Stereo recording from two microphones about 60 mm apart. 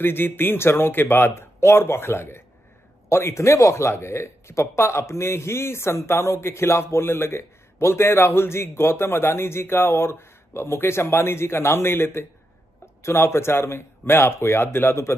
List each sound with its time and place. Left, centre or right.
0.0 s speech: left